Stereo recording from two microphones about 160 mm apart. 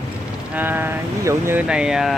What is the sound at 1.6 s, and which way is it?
Speech, 5° right (ahead or behind).